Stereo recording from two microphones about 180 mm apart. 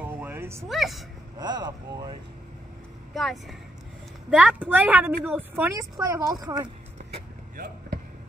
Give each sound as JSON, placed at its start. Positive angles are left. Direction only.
{"t": 0.0, "sound": "a sound", "side_deg": -10}
{"t": 0.7, "sound": "speech", "side_deg": 0}
{"t": 1.4, "sound": "speech", "side_deg": -20}
{"t": 3.2, "sound": "a woman's voice", "side_deg": 0}
{"t": 7.5, "sound": "basketball bounce", "side_deg": -55}